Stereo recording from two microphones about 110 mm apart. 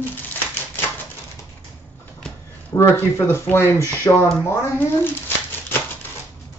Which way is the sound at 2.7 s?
25° left (ahead or behind).